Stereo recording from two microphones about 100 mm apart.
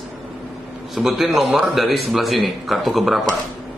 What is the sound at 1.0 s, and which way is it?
Speech, centre (ahead or behind).